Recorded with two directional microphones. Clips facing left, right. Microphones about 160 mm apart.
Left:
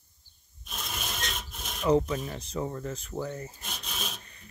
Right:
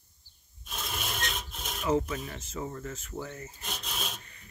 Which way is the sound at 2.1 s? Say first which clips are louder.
Left 4 dB; 25° left (ahead or behind).